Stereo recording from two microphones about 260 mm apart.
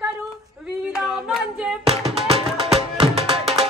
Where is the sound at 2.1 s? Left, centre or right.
Right.